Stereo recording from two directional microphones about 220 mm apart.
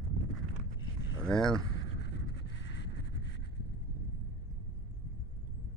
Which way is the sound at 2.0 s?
50° left (ahead or behind).